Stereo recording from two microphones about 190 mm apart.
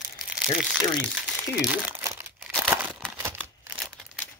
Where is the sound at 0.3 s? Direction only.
5° right (ahead or behind).